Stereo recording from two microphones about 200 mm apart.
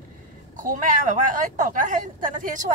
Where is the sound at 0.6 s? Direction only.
40° right (ahead or behind).